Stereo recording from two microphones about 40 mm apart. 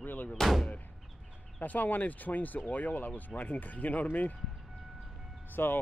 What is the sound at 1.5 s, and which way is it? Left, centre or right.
Speech, left.